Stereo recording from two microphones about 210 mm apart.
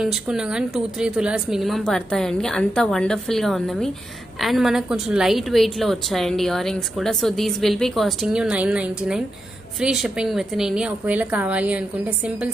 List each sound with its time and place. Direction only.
0.0 s a woman's voice: 5° right (ahead or behind)